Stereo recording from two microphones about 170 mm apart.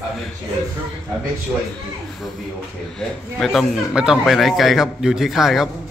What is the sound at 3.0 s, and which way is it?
Speech, centre (ahead or behind).